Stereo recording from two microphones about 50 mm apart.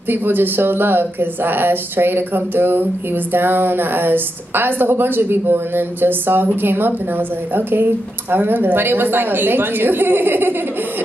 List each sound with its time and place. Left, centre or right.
0.1 s speech: right